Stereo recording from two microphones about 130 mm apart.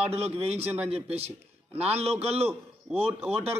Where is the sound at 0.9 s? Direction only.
50° right (ahead or behind).